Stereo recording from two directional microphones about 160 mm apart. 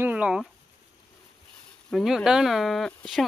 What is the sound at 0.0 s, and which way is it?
Speech, 10° right (ahead or behind).